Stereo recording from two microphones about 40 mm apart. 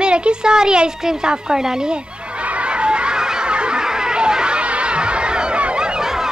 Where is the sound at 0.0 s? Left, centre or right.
Right.